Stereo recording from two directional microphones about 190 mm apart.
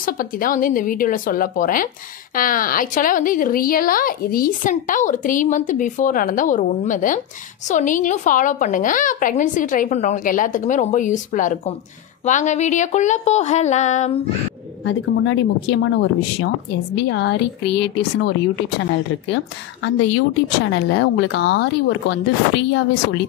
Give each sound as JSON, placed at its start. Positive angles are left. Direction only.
{"t": 0.0, "sound": "a woman's voice", "side_deg": 50}
{"t": 14.9, "sound": "a woman's voice", "side_deg": 85}
{"t": 15.8, "sound": "a woman's voice", "side_deg": 70}
{"t": 18.8, "sound": "a woman's voice", "side_deg": 80}